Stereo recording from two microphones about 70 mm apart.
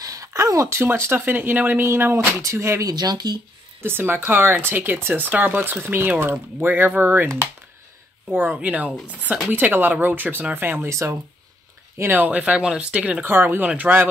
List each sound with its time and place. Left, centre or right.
0.0 s a sound: right
0.8 s speech: right
2.8 s speech: right
3.8 s speech: right
8.3 s speech: right
12.0 s speech: right
13.2 s speech: right